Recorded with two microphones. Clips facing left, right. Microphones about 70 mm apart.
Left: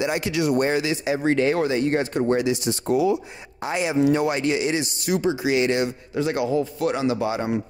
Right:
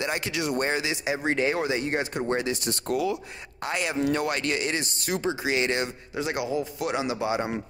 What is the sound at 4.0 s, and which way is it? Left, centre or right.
Speech, right.